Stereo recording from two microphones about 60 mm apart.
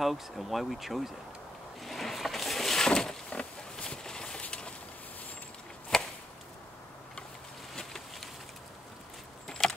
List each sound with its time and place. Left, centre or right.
0.0 s speech: centre
1.8 s vehicle: centre
3.3 s a sound: centre
5.9 s chop: centre
7.7 s insect: centre
9.5 s a sound: centre